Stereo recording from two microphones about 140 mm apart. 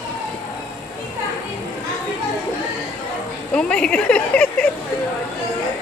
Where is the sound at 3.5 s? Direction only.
5° left (ahead or behind).